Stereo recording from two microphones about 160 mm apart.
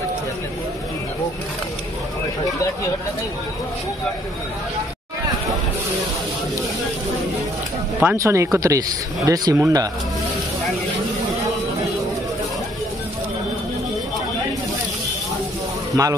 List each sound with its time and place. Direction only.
8.0 s speech: 15° right (ahead or behind)